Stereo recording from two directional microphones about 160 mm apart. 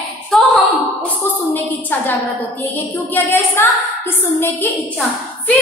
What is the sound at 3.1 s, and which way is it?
Speech, 10° left (ahead or behind).